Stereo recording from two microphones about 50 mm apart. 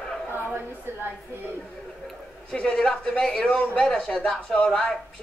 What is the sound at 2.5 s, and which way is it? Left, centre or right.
A man's voice, centre.